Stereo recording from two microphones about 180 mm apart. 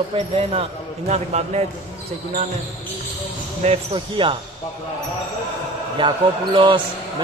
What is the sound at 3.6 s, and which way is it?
Speech, 35° right (ahead or behind).